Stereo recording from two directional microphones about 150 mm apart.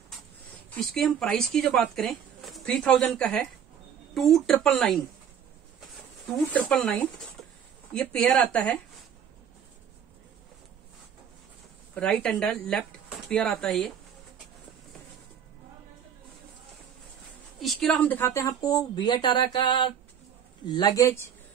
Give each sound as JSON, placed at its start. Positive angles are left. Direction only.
{"t": 0.7, "sound": "speech", "side_deg": 5}
{"t": 6.5, "sound": "a woman's voice", "side_deg": 10}
{"t": 11.9, "sound": "a woman's voice", "side_deg": 10}
{"t": 17.6, "sound": "speech", "side_deg": 5}